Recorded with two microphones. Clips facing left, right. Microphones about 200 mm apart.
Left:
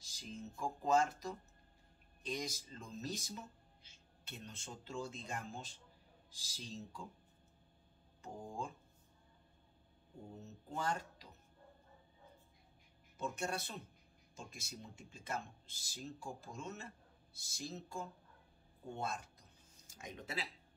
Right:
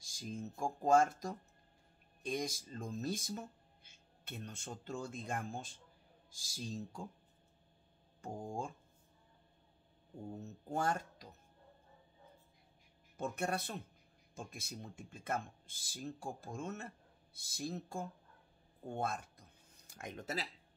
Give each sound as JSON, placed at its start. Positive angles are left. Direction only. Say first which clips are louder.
{"t": 0.1, "sound": "speech", "louder": "right 5 dB", "side_deg": -50}
{"t": 8.2, "sound": "speech", "louder": "right 3 dB", "side_deg": -50}
{"t": 10.7, "sound": "speech", "louder": "right 4 dB", "side_deg": -50}
{"t": 13.2, "sound": "speech", "louder": "right 3 dB", "side_deg": -55}
{"t": 18.9, "sound": "a sound", "louder": "right 4 dB", "side_deg": -50}